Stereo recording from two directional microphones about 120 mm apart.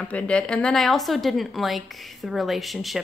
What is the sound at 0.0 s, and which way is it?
A woman's voice, 10° left (ahead or behind).